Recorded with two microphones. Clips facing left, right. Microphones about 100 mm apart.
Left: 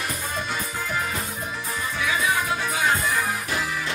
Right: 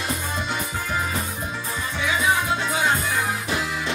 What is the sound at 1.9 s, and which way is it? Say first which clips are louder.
Music: right 2 dB; 25° right (ahead or behind).